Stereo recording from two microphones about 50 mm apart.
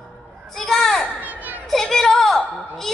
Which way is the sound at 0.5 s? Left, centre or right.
Centre.